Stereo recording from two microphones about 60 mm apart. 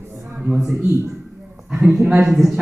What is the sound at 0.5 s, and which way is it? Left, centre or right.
A man's voice, centre.